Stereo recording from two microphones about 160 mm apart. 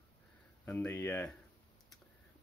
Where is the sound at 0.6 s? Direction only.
15° left (ahead or behind).